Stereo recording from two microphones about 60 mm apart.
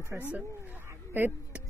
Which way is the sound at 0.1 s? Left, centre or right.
Right.